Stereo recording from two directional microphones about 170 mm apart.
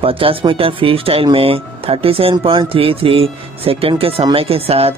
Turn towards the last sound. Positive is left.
turn(degrees=-35)  # may be behind; listen again after turning